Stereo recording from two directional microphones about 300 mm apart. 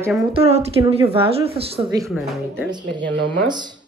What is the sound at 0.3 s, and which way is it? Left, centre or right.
Speech, centre.